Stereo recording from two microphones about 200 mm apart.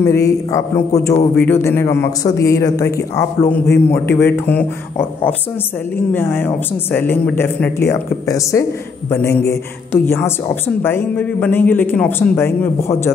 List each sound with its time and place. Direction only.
0.0 s a man's voice: 15° left (ahead or behind)